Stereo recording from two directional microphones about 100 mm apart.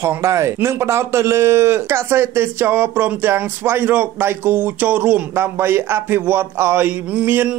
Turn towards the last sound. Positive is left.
turn(degrees=-15)  # may be behind; listen again after turning